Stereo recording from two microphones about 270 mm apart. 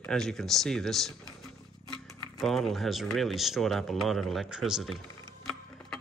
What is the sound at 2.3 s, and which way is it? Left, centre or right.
Speech, centre.